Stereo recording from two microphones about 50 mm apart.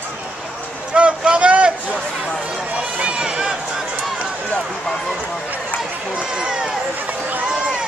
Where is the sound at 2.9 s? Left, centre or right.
Right.